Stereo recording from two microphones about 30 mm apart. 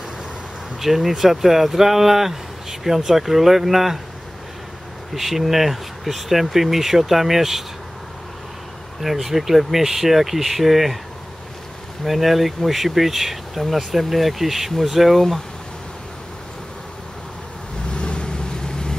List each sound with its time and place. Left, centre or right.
0.7 s speech: centre
5.1 s speech: centre
9.0 s speech: centre
12.0 s speech: centre
17.9 s vehicle: left